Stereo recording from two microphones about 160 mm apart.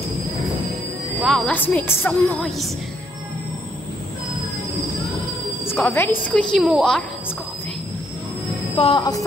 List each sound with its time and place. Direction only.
1.2 s a woman's voice: 5° left (ahead or behind)
5.7 s a woman's voice: 15° left (ahead or behind)
8.7 s speech: 30° left (ahead or behind)